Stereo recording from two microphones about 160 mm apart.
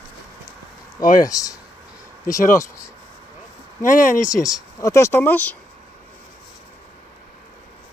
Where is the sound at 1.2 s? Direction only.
20° left (ahead or behind).